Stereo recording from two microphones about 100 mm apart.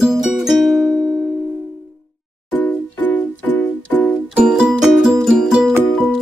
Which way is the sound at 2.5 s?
15° left (ahead or behind).